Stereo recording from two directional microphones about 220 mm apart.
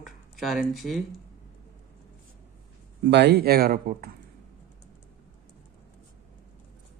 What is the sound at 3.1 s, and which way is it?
Speech, 50° right (ahead or behind).